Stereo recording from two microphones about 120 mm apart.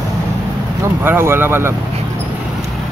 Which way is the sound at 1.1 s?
20° right (ahead or behind).